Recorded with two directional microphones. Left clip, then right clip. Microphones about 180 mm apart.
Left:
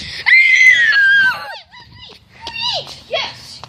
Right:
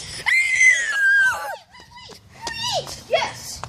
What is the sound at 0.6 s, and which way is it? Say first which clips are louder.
Screaming: left 6 dB; 20° right (ahead or behind).